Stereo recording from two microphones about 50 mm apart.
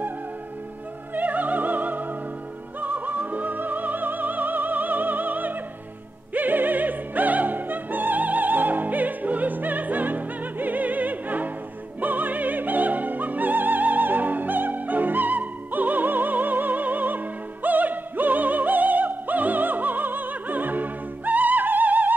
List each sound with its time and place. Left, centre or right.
1.1 s opera: right
2.8 s music: right
6.3 s opera: right